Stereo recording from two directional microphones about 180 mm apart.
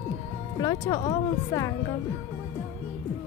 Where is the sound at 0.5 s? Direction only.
20° left (ahead or behind).